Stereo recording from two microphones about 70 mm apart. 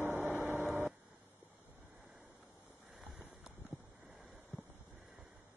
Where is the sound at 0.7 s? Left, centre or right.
Centre.